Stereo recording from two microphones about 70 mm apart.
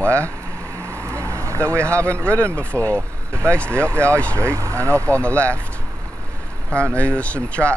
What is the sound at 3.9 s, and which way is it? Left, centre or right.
Speech, right.